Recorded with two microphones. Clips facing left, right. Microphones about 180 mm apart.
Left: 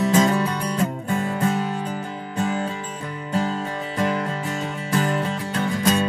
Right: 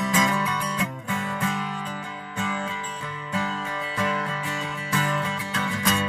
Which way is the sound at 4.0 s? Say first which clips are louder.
Left 5 dB; 40° left (ahead or behind).